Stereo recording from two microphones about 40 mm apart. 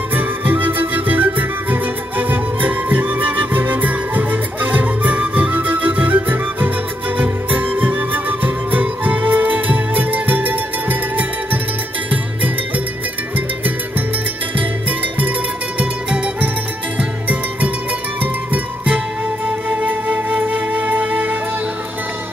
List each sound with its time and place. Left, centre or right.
0.1 s music: right
14.6 s music: right
18.2 s music: right